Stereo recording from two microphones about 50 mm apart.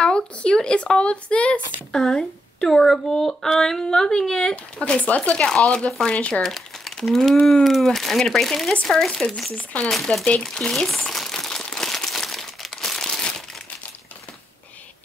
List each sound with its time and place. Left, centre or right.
0.0 s a woman's voice: left
1.9 s speech: centre
4.7 s a woman's voice: left
6.4 s speech: centre
10.1 s a woman's voice: left
10.4 s speech: centre
11.0 s crumpling: centre